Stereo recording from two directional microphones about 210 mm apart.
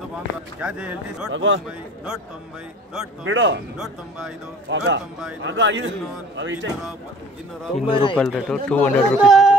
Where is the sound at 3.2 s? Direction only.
60° right (ahead or behind).